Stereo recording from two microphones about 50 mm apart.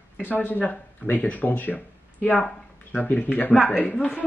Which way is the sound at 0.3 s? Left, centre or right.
Left.